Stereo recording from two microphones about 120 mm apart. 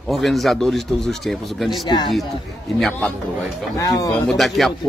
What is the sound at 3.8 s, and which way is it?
Speech, 30° left (ahead or behind).